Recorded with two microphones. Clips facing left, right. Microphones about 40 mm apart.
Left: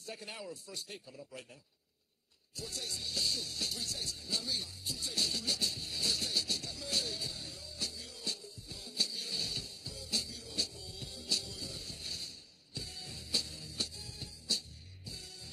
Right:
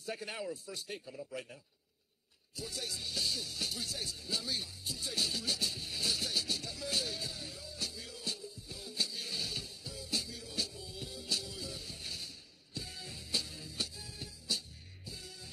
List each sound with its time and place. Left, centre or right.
0.0 s a man's voice: right
2.5 s music: centre